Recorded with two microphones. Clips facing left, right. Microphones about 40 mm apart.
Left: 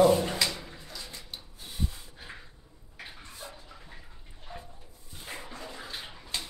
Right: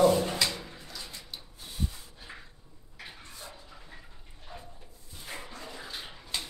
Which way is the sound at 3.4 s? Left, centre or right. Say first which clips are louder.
Left 1 dB; centre.